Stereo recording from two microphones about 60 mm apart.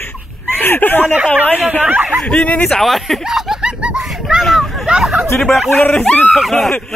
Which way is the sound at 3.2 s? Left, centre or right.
Centre.